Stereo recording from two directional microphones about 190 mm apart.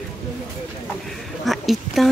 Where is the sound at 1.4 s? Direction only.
Centre (ahead or behind).